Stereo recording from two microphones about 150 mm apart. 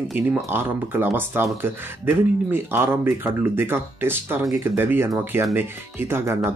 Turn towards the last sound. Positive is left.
turn(degrees=-15)  # may be behind; listen again after turning